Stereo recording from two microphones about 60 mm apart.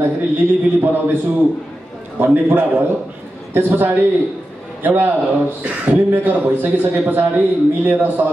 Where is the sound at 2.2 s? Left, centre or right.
Right.